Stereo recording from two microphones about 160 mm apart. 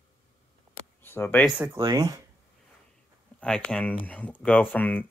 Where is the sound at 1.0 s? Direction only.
15° left (ahead or behind).